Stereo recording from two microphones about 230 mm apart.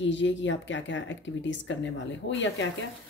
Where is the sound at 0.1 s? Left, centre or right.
Left.